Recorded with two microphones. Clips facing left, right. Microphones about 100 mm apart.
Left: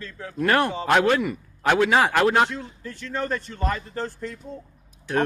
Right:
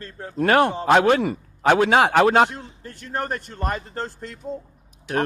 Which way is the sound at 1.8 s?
50° right (ahead or behind).